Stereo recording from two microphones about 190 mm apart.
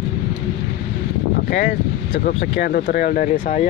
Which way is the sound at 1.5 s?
55° left (ahead or behind).